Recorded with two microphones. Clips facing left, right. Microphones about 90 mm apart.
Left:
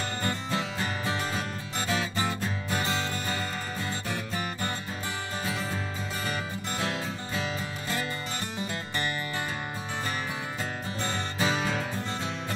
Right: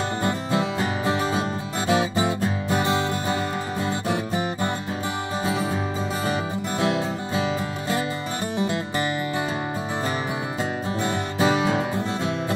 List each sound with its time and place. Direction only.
0.2 s music: 20° right (ahead or behind)
6.8 s music: 20° right (ahead or behind)
11.0 s music: 15° right (ahead or behind)